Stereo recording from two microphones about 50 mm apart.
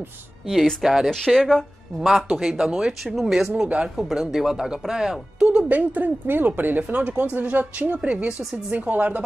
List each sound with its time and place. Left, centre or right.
0.8 s speech: centre
1.2 s speech: centre
2.0 s speech: centre
3.6 s speech: right
4.1 s speech: centre
5.7 s a woman's voice: right